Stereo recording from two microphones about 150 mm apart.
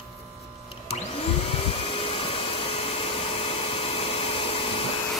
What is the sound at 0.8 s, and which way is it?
Vacuum cleaner, 40° left (ahead or behind).